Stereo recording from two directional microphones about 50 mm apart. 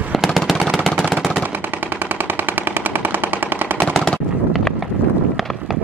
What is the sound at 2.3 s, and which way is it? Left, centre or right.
Machine gun, right.